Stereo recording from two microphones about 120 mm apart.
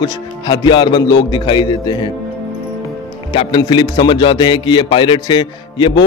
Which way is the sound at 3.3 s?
55° left (ahead or behind).